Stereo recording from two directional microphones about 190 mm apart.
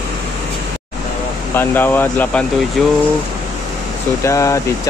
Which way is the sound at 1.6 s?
10° left (ahead or behind).